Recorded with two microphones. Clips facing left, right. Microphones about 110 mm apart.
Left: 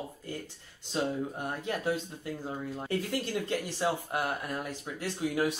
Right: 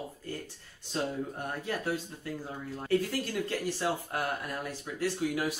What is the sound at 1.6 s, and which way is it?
Speech, 20° left (ahead or behind).